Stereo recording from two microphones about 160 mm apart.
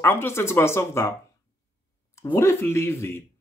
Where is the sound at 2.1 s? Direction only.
20° left (ahead or behind).